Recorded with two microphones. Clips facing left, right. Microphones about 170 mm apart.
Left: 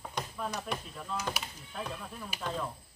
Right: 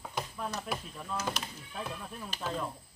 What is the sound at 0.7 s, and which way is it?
Speech, 5° right (ahead or behind).